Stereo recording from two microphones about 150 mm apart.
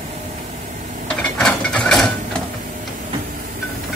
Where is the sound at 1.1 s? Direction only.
5° left (ahead or behind).